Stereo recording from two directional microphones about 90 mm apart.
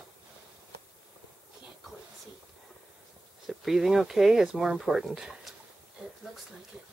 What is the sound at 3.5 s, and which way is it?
Speech, 5° right (ahead or behind).